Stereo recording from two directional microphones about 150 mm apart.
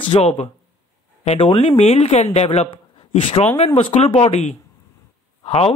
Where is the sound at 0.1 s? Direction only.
45° left (ahead or behind).